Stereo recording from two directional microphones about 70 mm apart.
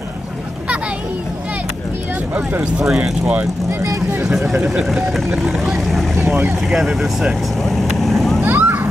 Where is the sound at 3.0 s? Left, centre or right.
Centre.